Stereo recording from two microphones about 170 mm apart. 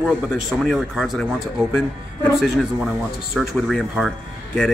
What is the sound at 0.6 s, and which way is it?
Speech, centre (ahead or behind).